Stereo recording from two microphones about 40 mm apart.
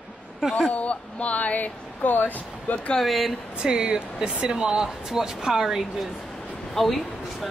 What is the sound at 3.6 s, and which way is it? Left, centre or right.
Speech, right.